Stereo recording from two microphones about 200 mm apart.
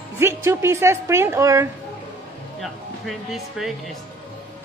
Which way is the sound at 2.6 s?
Centre (ahead or behind).